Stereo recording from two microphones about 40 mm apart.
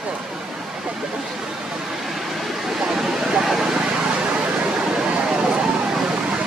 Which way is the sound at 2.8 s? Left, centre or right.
Centre.